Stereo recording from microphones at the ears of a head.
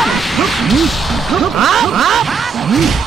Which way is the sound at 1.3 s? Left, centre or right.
Right.